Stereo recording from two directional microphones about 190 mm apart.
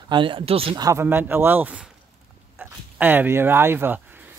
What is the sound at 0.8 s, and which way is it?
Speech, 10° right (ahead or behind).